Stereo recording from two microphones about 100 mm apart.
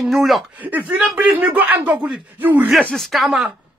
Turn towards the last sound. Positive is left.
turn(degrees=0)  # may be behind; listen again after turning